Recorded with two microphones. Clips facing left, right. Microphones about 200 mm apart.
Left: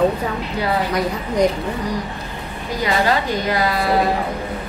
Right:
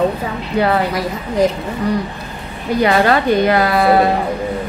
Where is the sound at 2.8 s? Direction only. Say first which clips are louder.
Right 5 dB; 60° right (ahead or behind).